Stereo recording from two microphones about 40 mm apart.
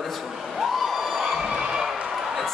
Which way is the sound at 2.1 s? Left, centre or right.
Centre.